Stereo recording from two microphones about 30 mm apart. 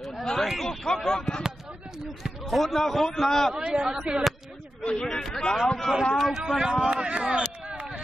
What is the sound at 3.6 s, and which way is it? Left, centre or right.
Speech, right.